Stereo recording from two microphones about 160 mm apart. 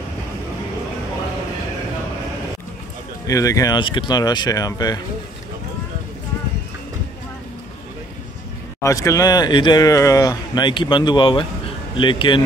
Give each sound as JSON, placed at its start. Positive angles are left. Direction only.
{"t": 3.3, "sound": "speech", "side_deg": 20}
{"t": 8.8, "sound": "speech", "side_deg": 20}